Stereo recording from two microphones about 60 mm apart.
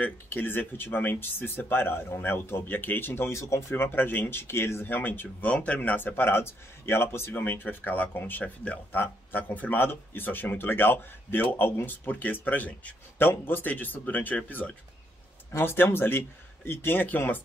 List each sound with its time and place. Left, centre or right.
0.0 s speech: left
3.3 s speech: left
3.7 s speech: left
5.5 s speech: left